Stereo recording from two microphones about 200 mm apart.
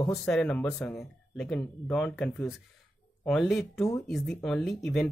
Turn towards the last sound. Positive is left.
turn(degrees=0)  # may be behind; listen again after turning